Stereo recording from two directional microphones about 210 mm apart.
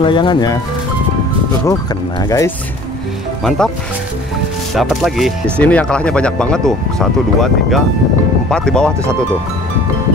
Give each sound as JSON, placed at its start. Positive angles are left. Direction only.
{"t": 0.0, "sound": "speech", "side_deg": 25}
{"t": 2.2, "sound": "speech", "side_deg": 15}
{"t": 3.4, "sound": "speech", "side_deg": 0}
{"t": 4.7, "sound": "speech", "side_deg": 0}